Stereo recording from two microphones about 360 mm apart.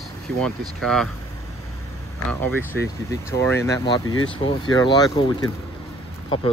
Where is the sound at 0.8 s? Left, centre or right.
Centre.